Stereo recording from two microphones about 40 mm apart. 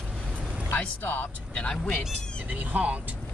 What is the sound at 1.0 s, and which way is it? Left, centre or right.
Speech, left.